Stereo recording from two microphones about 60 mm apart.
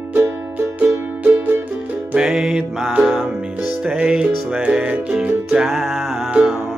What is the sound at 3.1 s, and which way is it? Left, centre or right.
Music, centre.